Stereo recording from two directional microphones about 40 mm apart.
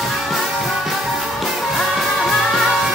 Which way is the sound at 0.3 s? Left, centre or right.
Centre.